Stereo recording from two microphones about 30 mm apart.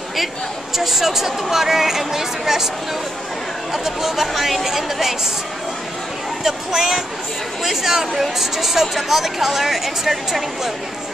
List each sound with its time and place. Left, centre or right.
0.7 s a woman's voice: centre
3.7 s a woman's voice: centre
6.4 s a woman's voice: centre